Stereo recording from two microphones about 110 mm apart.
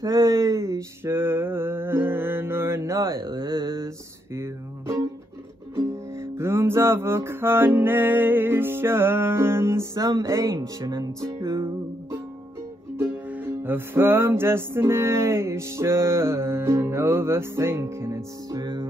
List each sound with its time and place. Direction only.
0.0 s mantra: 35° right (ahead or behind)
3.8 s guitar: 25° right (ahead or behind)
5.8 s music: 25° right (ahead or behind)
10.9 s music: 40° right (ahead or behind)
12.9 s music: 20° right (ahead or behind)
18.5 s music: 45° right (ahead or behind)